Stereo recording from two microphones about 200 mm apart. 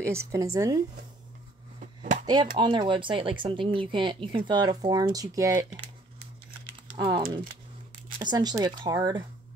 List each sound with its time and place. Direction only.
0.0 s a woman's voice: 15° right (ahead or behind)
2.2 s speech: 20° right (ahead or behind)
6.6 s typing: 25° right (ahead or behind)
8.2 s speech: 20° right (ahead or behind)